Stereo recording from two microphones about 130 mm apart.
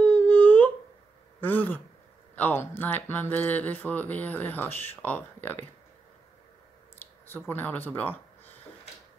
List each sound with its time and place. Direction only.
0.0 s a sound: 15° left (ahead or behind)
1.4 s speech: 15° left (ahead or behind)
7.2 s speech: 15° left (ahead or behind)